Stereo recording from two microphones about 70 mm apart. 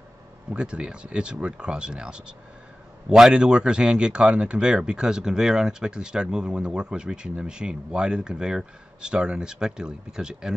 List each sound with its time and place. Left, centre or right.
0.5 s speech: centre